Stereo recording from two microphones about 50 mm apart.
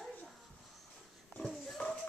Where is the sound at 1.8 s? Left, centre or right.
Left.